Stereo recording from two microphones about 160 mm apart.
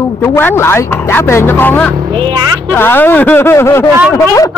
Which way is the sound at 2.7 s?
15° left (ahead or behind).